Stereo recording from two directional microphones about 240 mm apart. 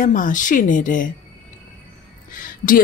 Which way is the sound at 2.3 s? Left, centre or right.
Left.